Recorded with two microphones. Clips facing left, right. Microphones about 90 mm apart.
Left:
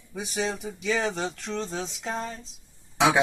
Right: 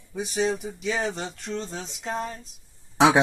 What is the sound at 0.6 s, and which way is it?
Speech, 90° left.